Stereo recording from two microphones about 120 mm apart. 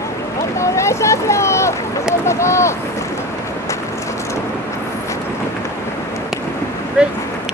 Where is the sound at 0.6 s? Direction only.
25° left (ahead or behind).